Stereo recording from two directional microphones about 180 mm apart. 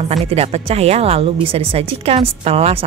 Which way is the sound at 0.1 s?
35° right (ahead or behind).